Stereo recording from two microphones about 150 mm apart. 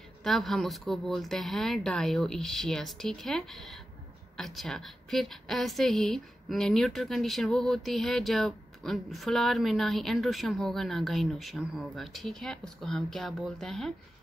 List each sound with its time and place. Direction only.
0.2 s a woman's voice: centre (ahead or behind)